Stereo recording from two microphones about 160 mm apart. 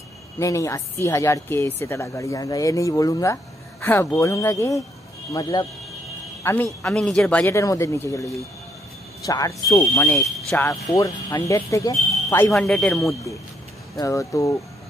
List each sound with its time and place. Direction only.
0.4 s speech: 20° left (ahead or behind)
6.4 s speech: 10° left (ahead or behind)
7.5 s speech: 20° left (ahead or behind)
10.1 s speech: centre (ahead or behind)
10.6 s speech: 20° left (ahead or behind)
12.5 s a man's voice: 5° left (ahead or behind)
13.9 s speech: 20° left (ahead or behind)